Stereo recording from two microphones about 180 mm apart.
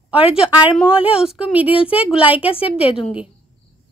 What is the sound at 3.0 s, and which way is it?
Speech, 5° right (ahead or behind).